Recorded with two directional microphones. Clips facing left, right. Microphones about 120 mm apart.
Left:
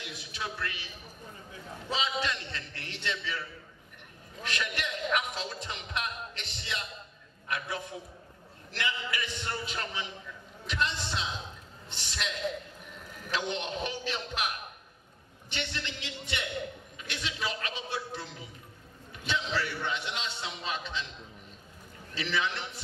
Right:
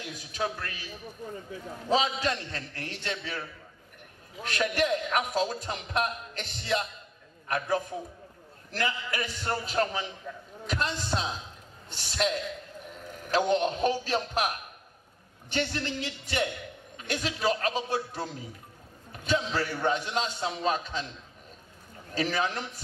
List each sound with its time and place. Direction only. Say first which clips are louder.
0.0 s a man's voice: right 6 dB; 40° right (ahead or behind)
22.1 s a man's voice: right 4 dB; 40° right (ahead or behind)